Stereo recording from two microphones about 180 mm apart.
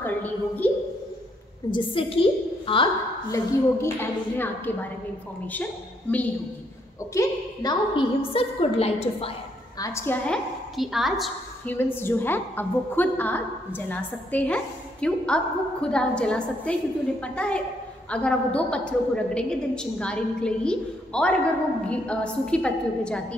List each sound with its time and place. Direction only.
0.0 s a sound: 10° left (ahead or behind)
1.7 s a woman's voice: 30° left (ahead or behind)
3.3 s a woman's voice: 15° left (ahead or behind)
7.2 s a woman's voice: 25° left (ahead or behind)
9.8 s a woman's voice: 15° left (ahead or behind); by 11.7 s centre (ahead or behind)
11.7 s a woman's voice: 10° left (ahead or behind)